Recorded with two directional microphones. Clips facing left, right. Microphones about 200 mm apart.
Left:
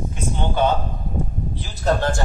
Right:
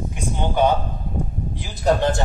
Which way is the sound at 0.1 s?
10° right (ahead or behind).